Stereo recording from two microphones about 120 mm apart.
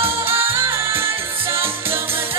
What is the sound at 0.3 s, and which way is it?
Music, 20° right (ahead or behind).